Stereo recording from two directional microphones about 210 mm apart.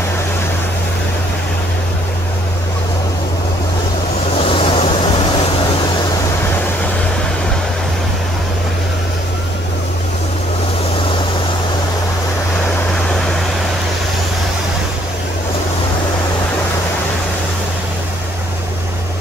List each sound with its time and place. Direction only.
4.5 s waves: 25° left (ahead or behind)